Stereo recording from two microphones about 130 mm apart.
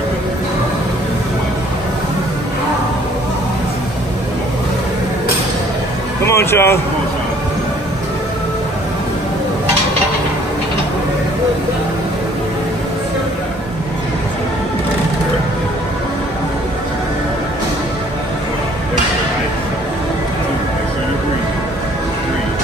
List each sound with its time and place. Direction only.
6.2 s speech: 20° left (ahead or behind)